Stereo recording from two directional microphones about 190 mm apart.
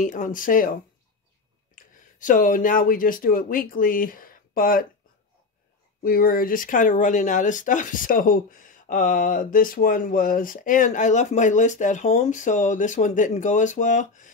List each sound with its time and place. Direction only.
0.0 s speech: 45° left (ahead or behind)
2.0 s speech: 45° left (ahead or behind)
6.0 s speech: 50° left (ahead or behind)